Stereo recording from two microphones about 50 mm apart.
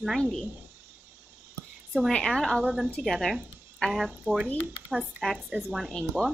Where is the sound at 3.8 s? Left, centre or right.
Centre.